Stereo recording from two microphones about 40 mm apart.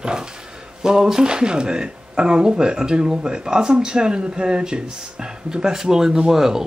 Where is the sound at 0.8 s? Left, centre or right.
Centre.